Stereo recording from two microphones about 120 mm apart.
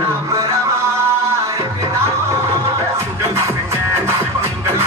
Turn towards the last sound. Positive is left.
turn(degrees=-20)  # may be behind; listen again after turning